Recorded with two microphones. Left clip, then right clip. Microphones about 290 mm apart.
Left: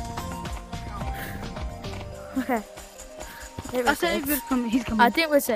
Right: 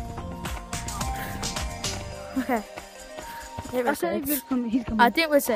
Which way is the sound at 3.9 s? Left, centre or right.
Left.